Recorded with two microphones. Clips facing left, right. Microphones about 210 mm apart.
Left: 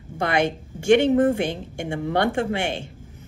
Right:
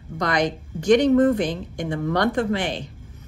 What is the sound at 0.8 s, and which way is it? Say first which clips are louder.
A woman's voice: right 1 dB; 25° left (ahead or behind).